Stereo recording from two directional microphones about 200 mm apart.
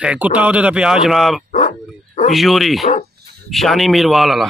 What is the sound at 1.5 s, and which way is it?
Dog, 40° left (ahead or behind).